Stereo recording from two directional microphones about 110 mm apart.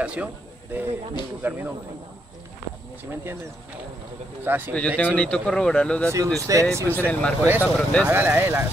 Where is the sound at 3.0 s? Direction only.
20° right (ahead or behind).